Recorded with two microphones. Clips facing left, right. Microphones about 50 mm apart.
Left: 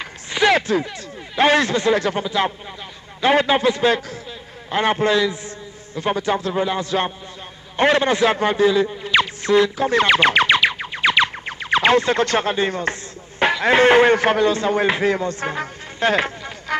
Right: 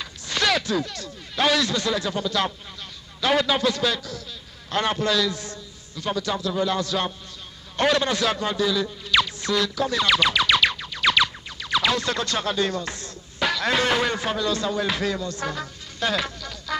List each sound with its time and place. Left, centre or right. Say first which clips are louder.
0.3 s zipper: left 6 dB; left
0.6 s a man's voice: left 5 dB; left
0.8 s speech: left 3 dB; left
2.2 s a man's voice: left 4 dB; left
10.8 s a sound: left 4 dB; left
11.4 s a man's voice: left 6 dB; left
15.0 s music: left 6 dB; left